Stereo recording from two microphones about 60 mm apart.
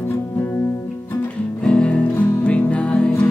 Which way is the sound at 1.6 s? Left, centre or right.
Centre.